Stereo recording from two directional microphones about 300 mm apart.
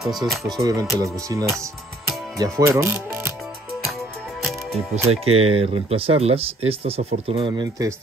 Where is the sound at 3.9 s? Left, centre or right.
Centre.